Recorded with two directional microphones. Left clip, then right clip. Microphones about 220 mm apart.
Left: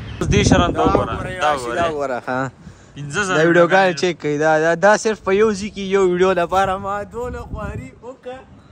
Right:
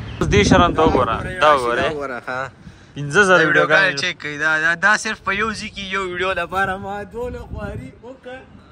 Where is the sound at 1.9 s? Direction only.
50° left (ahead or behind).